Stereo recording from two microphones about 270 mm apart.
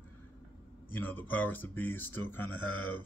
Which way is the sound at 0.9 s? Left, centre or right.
Centre.